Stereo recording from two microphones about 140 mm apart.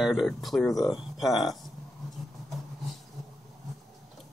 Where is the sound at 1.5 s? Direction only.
Centre (ahead or behind).